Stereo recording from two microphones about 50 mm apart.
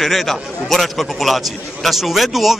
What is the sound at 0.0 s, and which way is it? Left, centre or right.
A man's voice, centre.